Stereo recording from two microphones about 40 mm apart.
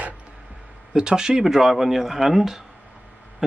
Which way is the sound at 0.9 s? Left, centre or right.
Centre.